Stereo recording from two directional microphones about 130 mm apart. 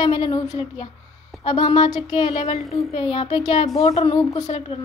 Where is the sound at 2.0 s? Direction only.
50° left (ahead or behind); by 4.5 s 30° left (ahead or behind).